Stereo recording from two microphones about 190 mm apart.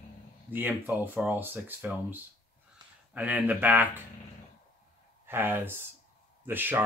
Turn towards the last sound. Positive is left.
turn(degrees=-10)  # may be behind; listen again after turning